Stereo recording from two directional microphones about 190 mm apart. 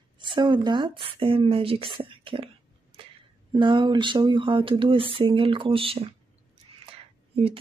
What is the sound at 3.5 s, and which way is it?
Speech, 25° right (ahead or behind).